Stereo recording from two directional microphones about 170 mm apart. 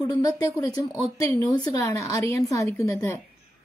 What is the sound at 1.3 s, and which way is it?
A woman's voice, 20° left (ahead or behind).